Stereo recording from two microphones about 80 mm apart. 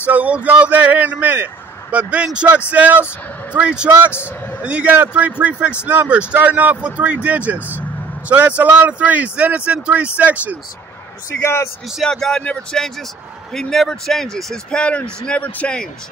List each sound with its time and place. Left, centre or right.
0.0 s speech: centre
4.1 s a man's voice: left
4.6 s speech: centre
11.4 s a man's voice: left
12.0 s a man's voice: centre